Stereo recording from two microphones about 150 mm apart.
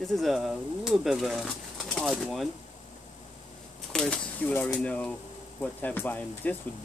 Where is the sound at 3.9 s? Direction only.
5° left (ahead or behind).